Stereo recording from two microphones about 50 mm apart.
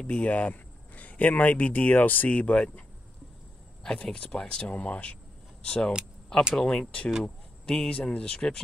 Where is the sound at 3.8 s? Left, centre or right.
Centre.